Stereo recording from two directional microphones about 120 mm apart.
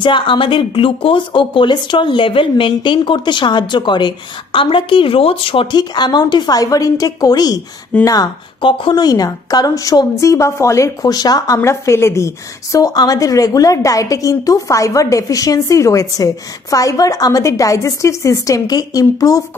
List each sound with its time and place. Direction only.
0.0 s speech: 45° left (ahead or behind)
8.5 s speech: 45° left (ahead or behind)